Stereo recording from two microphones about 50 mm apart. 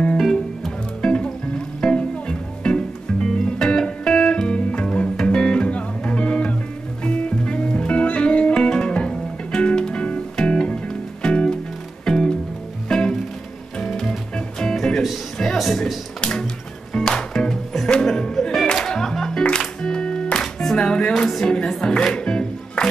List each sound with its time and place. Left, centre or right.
0.2 s music: centre
1.0 s music: centre
16.2 s music: centre
21.3 s music: centre